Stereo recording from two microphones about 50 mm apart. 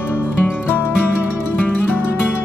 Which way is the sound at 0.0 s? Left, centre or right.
Left.